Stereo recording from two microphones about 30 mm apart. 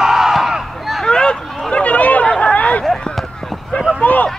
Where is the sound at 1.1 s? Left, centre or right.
Left.